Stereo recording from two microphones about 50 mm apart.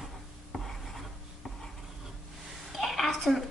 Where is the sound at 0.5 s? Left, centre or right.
Centre.